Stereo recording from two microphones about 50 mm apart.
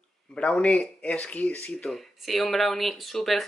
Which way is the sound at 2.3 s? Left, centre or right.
Centre.